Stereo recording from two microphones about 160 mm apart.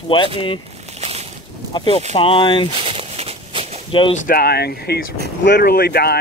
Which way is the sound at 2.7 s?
35° right (ahead or behind).